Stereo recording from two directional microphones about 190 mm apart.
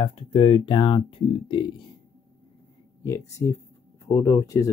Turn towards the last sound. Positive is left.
turn(degrees=15)  # may be behind; listen again after turning